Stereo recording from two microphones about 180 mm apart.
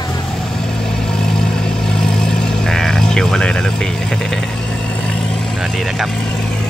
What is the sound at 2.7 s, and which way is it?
Vehicle, centre (ahead or behind).